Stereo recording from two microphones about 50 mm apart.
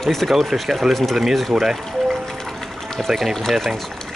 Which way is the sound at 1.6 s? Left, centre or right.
Centre.